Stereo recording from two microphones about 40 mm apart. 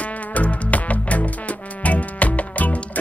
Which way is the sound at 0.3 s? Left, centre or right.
Left.